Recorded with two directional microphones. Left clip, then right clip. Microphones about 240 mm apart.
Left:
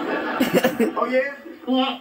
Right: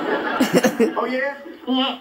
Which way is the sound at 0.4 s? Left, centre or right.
Centre.